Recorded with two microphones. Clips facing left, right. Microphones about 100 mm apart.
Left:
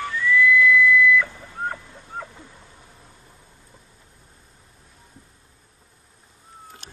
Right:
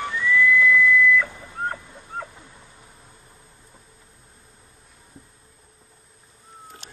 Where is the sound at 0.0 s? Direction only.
15° right (ahead or behind).